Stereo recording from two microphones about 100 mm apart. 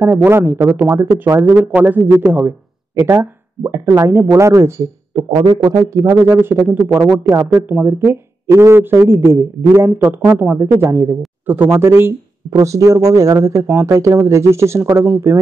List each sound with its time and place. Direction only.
0.0 s speech: 20° right (ahead or behind)
7.2 s speech: 30° right (ahead or behind)
7.6 s speech: 20° right (ahead or behind)
12.4 s speech: 35° right (ahead or behind)